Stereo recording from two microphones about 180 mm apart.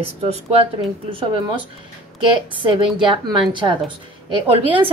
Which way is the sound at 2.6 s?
25° right (ahead or behind).